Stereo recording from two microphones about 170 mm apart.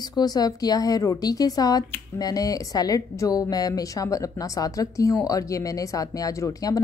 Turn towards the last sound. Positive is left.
turn(degrees=20)  # may be behind; listen again after turning